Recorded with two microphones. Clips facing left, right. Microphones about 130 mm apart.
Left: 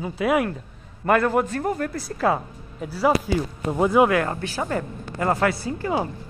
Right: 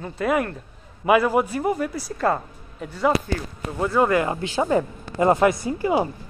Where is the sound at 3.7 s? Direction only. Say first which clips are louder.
Left 3 dB; 15° left (ahead or behind).